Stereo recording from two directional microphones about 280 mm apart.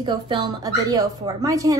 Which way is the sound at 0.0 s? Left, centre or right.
Centre.